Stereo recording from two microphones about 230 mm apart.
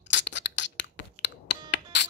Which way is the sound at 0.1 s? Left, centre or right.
Left.